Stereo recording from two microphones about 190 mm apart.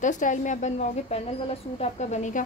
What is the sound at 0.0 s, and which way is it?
A woman's voice, 40° left (ahead or behind).